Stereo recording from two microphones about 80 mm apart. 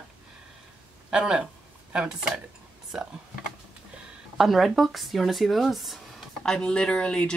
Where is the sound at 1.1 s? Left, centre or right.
Centre.